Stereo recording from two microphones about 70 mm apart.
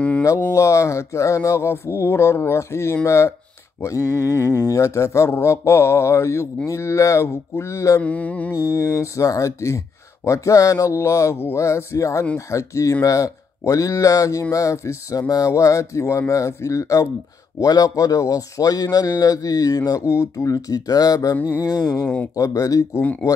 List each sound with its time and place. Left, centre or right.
0.5 s a sound: left
3.1 s speech: left
8.0 s mantra: left
8.5 s speech: left
17.6 s speech: left
22.0 s mantra: left
22.3 s speech: left